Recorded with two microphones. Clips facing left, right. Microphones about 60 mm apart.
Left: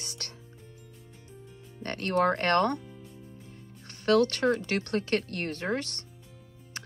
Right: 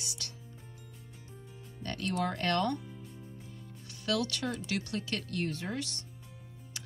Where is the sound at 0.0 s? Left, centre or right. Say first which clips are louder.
Left 2 dB; left.